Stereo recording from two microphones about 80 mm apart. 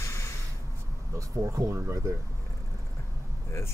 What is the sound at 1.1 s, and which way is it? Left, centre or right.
Speech, right.